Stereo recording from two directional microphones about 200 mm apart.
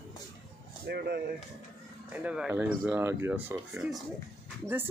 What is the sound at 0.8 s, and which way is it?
Speech, 50° right (ahead or behind).